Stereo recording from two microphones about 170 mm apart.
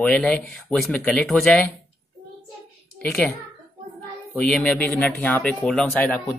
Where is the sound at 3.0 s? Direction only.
5° left (ahead or behind).